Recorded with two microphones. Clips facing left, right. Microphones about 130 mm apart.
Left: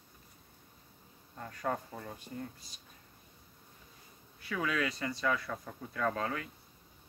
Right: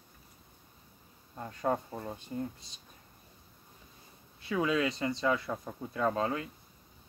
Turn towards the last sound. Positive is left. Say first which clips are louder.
# right 4 dB
turn(degrees=-25)  # may be behind; listen again after turning